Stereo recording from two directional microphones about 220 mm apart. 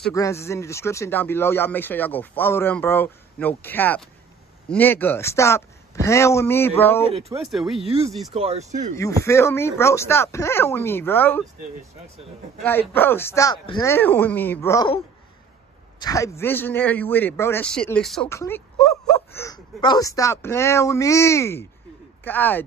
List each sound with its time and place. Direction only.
0.1 s speech: 15° left (ahead or behind)
7.5 s speech: centre (ahead or behind)
8.3 s speech: 30° right (ahead or behind)
8.9 s speech: 15° left (ahead or behind)
12.6 s speech: 10° left (ahead or behind)
16.0 s speech: 15° left (ahead or behind)